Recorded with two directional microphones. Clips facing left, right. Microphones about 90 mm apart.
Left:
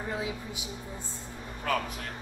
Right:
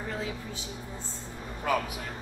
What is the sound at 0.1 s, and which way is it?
Speech, 15° left (ahead or behind).